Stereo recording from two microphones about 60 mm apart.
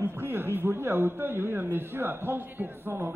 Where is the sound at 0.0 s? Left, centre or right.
Right.